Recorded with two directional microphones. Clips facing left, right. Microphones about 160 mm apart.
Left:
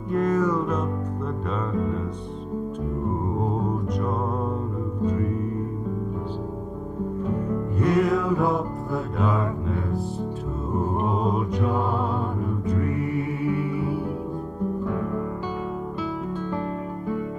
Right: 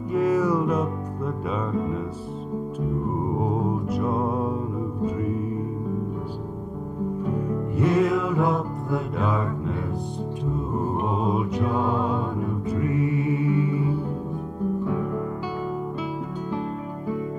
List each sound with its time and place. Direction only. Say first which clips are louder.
0.1 s music: right 1 dB; 5° right (ahead or behind)
3.3 s music: right 1 dB; 5° right (ahead or behind)
7.7 s music: right 1 dB; 5° right (ahead or behind)
8.1 s music: left 1 dB; 15° right (ahead or behind)
11.8 s music: right 2 dB; 15° right (ahead or behind)
13.7 s music: right 1 dB; 10° left (ahead or behind)